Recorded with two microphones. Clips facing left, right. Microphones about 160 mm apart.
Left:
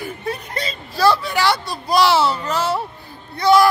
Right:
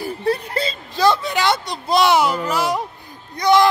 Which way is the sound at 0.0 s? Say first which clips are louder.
Right 6 dB; 35° right (ahead or behind).